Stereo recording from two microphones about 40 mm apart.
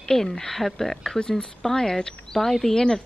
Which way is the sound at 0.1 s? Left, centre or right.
Centre.